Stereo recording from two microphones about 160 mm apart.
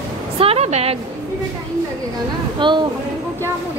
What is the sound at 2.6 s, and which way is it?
Speech, 30° right (ahead or behind).